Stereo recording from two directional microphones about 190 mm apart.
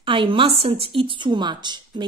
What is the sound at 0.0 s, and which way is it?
A woman's voice, 25° right (ahead or behind).